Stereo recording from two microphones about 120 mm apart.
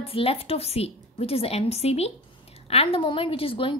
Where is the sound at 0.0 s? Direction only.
55° left (ahead or behind).